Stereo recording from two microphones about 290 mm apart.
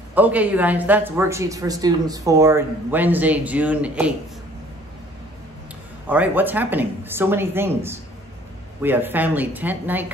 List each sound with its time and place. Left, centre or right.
0.1 s speech: centre
6.0 s speech: centre